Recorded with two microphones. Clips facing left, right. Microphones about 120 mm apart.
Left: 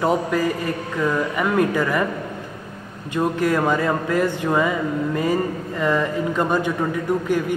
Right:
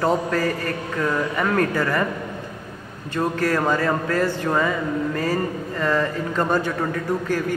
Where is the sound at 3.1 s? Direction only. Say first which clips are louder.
Left 2 dB; 15° left (ahead or behind).